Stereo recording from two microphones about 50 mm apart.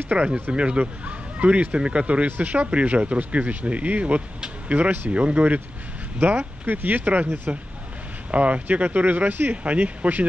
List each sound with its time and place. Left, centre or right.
0.1 s speech: right
9.5 s speech: right